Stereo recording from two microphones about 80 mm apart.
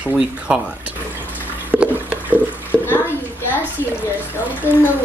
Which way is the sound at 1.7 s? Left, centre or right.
Centre.